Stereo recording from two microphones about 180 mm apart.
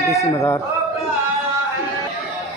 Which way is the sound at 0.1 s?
15° left (ahead or behind).